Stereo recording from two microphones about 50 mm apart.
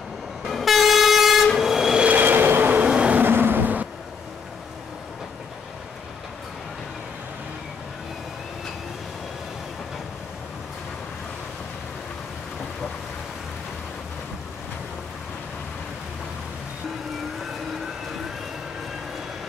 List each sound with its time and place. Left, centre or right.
0.5 s train: centre
2.0 s train: right
2.9 s vehicle: right
3.2 s vehicle: right